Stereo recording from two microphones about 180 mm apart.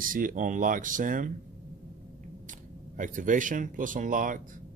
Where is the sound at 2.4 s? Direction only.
45° right (ahead or behind).